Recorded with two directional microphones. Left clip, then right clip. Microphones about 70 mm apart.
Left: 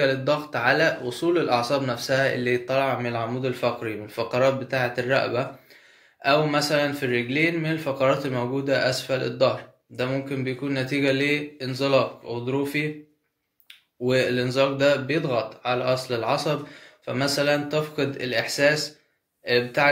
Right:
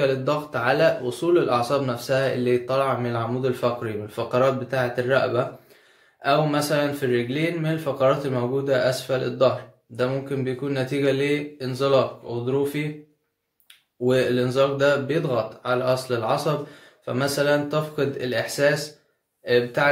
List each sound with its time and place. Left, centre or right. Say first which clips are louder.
0.0 s speech: even; right
6.5 s speech: even; right
14.0 s speech: right 2 dB; right